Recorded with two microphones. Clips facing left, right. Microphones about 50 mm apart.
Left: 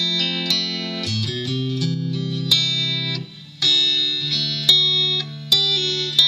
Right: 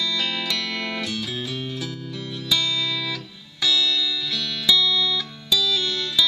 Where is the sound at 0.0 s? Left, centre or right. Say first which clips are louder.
Left 2 dB; centre.